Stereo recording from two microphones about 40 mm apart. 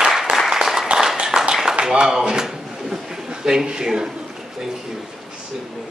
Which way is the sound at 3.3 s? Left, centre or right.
Right.